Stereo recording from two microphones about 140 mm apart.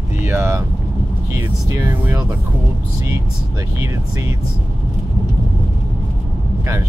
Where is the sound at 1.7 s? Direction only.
15° right (ahead or behind).